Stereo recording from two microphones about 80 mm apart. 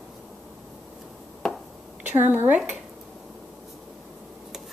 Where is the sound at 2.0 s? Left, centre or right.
Right.